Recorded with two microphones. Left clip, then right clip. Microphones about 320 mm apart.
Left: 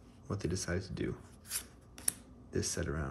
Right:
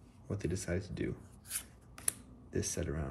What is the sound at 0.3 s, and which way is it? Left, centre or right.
Speech, centre.